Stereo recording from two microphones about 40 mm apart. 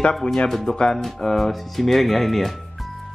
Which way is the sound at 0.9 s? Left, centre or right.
Centre.